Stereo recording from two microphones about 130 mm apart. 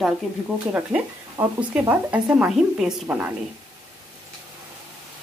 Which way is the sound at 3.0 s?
15° right (ahead or behind).